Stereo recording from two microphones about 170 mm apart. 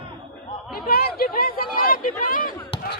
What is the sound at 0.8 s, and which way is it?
Speech, 60° left (ahead or behind).